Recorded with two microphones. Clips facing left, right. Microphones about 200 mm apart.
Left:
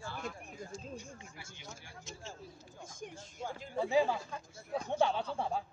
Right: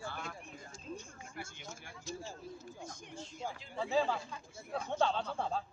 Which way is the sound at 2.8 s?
50° left (ahead or behind).